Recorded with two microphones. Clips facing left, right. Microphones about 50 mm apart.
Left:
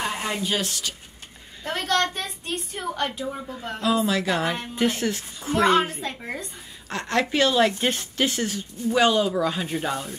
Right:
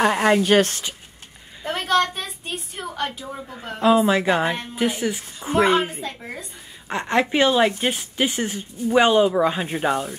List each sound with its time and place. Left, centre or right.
0.0 s a woman's voice: right
1.6 s a woman's voice: centre
3.8 s a woman's voice: right
4.7 s a woman's voice: centre
6.9 s a woman's voice: right